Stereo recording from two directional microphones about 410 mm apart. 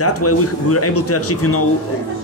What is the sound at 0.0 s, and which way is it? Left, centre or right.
Speech, left.